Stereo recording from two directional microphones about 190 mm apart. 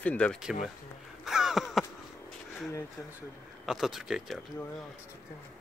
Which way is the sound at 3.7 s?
Centre (ahead or behind).